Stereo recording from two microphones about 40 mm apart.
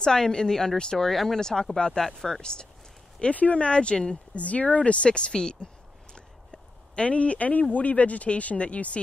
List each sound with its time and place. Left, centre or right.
0.0 s speech: centre
1.8 s speech: centre
3.2 s speech: left
3.6 s speech: left
4.4 s speech: left; by 5.7 s centre
7.0 s speech: left